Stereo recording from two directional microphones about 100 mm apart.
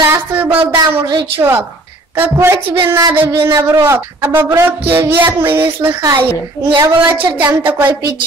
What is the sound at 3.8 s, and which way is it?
A woman's voice, 20° right (ahead or behind).